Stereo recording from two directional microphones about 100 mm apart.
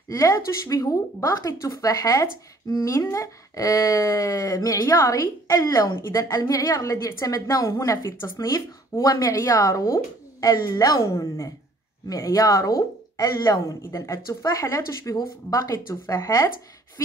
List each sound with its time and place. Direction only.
0.1 s a woman's voice: 30° left (ahead or behind)
6.2 s speech: 40° left (ahead or behind)
13.8 s speech: 30° left (ahead or behind)